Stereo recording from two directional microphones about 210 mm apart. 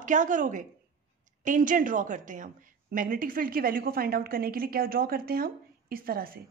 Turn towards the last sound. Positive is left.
turn(degrees=-45)  # may be behind; listen again after turning